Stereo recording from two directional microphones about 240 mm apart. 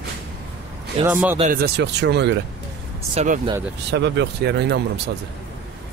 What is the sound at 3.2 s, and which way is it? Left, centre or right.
Speech, right.